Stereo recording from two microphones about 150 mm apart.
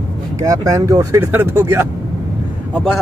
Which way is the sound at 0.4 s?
20° right (ahead or behind).